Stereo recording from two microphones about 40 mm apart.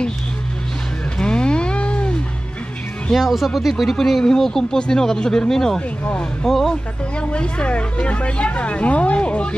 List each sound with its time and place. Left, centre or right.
1.1 s a sound: left
3.2 s speech: centre
7.2 s speech: left